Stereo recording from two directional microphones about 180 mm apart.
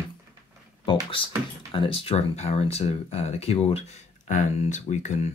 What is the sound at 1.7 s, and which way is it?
Speech, 30° left (ahead or behind).